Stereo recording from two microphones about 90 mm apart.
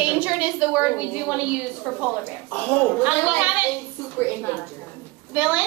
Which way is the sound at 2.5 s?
20° left (ahead or behind).